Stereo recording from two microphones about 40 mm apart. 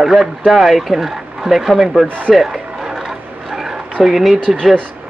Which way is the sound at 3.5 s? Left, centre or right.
Centre.